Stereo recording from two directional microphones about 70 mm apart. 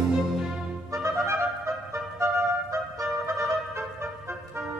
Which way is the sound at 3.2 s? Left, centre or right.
Right.